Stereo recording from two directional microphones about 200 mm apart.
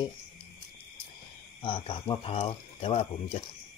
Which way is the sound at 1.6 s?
25° left (ahead or behind).